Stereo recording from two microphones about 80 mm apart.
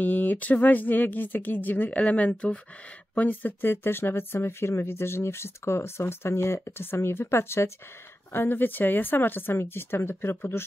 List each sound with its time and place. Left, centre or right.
0.0 s speech: left